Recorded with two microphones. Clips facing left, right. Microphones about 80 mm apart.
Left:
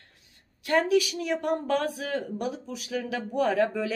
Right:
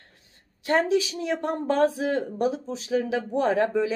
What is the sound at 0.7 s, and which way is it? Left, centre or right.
Speech, right.